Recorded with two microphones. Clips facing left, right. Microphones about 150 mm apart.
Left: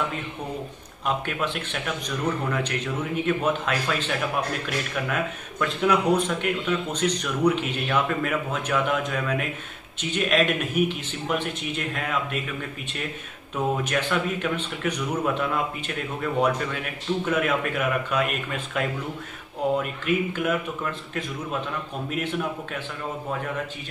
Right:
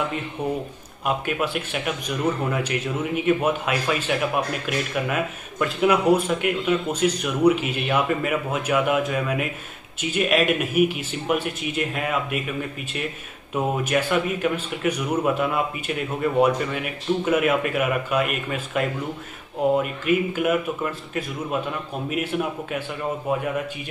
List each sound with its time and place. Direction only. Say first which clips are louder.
1.0 s speech: right 2 dB; 10° right (ahead or behind)
13.8 s speech: right 3 dB; 5° right (ahead or behind)